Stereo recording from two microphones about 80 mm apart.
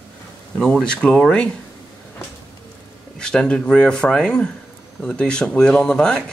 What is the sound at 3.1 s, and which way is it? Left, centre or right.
Speech, centre.